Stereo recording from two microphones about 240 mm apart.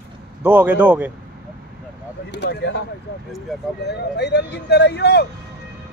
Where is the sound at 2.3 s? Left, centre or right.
Left.